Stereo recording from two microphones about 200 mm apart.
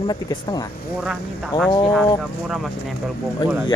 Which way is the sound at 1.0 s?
Centre (ahead or behind).